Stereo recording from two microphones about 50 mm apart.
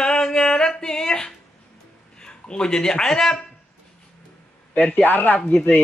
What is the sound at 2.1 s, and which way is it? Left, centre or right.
Speech, centre.